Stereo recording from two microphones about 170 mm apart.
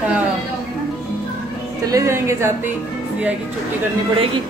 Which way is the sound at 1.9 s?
15° right (ahead or behind).